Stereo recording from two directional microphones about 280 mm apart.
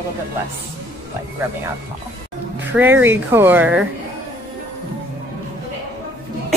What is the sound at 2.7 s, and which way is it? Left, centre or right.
Speech, centre.